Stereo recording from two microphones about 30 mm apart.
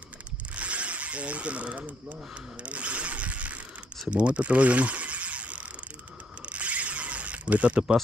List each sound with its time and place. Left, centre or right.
0.6 s speech: right
2.6 s ratchet: right
4.1 s speech: right
6.5 s a sound: right